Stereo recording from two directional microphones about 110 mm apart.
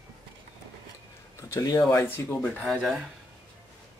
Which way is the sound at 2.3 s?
10° left (ahead or behind).